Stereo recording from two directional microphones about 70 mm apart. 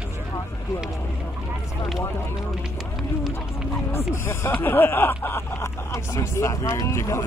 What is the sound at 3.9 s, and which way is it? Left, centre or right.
Speech, left.